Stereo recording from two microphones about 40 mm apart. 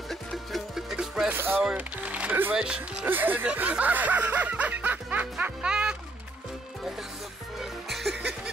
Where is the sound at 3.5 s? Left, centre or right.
Right.